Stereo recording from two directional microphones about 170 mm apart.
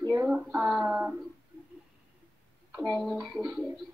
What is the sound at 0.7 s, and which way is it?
Speech, 10° right (ahead or behind).